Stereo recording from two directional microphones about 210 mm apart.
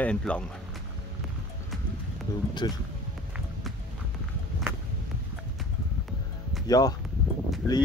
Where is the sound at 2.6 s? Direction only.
20° left (ahead or behind).